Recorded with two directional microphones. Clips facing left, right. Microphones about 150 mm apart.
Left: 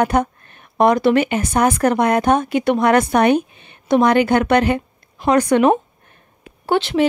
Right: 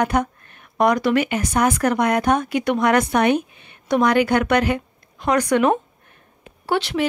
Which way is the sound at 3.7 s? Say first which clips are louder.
Left 3 dB; 25° left (ahead or behind).